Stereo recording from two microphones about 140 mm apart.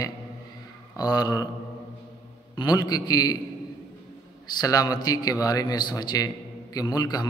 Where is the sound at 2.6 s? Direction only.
30° left (ahead or behind).